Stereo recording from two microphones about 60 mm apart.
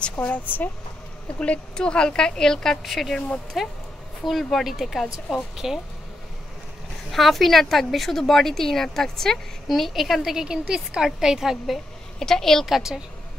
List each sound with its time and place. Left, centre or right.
0.2 s speech: left
1.4 s a woman's voice: centre
7.1 s speech: centre
12.2 s speech: centre
12.7 s a woman's voice: centre